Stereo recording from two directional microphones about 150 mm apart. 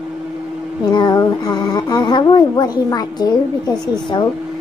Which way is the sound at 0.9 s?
30° left (ahead or behind).